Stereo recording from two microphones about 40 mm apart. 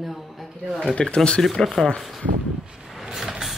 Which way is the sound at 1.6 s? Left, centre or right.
Centre.